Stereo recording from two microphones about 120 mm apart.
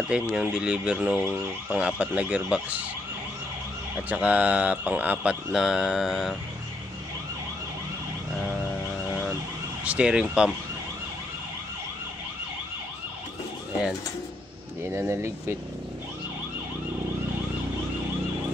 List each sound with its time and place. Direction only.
0.1 s mantra: 5° right (ahead or behind)
4.1 s mantra: 10° right (ahead or behind)
9.8 s mantra: 10° right (ahead or behind)
14.9 s speech: 20° right (ahead or behind)